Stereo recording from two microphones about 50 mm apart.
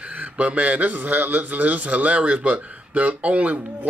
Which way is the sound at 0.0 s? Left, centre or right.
Right.